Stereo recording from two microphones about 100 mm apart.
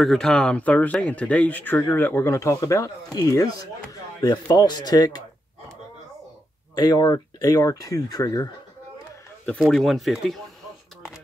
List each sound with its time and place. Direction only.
0.0 s speech: 5° left (ahead or behind); by 5.2 s 40° left (ahead or behind)
6.7 s speech: 40° left (ahead or behind)
9.6 s speech: centre (ahead or behind)